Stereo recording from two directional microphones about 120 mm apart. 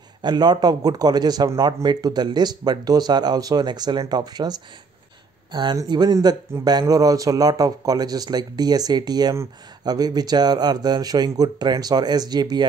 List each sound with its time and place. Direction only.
0.2 s speech: 35° right (ahead or behind)